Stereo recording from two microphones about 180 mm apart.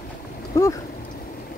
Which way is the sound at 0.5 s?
20° left (ahead or behind).